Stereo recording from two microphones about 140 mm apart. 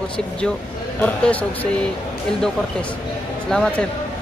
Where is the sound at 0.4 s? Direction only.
10° left (ahead or behind).